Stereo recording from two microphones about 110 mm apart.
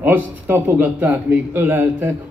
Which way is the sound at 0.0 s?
20° right (ahead or behind).